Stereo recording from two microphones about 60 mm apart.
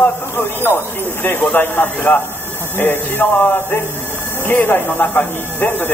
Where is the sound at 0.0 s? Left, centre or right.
Left.